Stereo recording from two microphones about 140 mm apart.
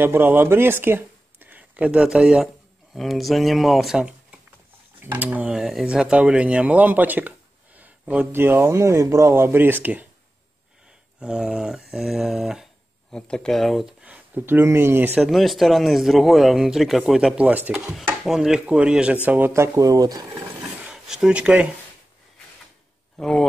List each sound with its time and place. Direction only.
0.0 s speech: 15° right (ahead or behind)
11.1 s speech: 5° right (ahead or behind)
14.0 s speech: 10° right (ahead or behind)
15.2 s speech: centre (ahead or behind); by 20.2 s 25° right (ahead or behind)
20.8 s speech: 5° right (ahead or behind)
23.1 s speech: 5° left (ahead or behind)